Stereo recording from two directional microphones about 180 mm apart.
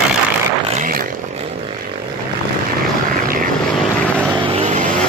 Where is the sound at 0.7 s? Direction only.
50° right (ahead or behind).